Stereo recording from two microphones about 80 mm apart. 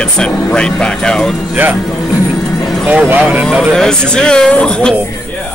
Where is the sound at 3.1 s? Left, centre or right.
Right.